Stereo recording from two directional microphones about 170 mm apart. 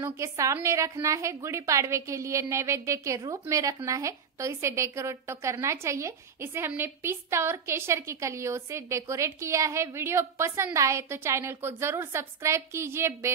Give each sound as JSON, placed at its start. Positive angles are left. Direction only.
{"t": 0.0, "sound": "a woman's voice", "side_deg": -15}